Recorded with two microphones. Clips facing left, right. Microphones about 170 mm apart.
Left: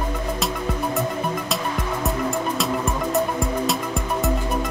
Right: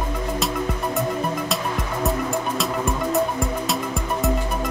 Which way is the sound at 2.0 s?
Centre (ahead or behind).